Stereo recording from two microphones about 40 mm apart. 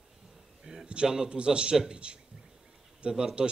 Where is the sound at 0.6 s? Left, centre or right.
Centre.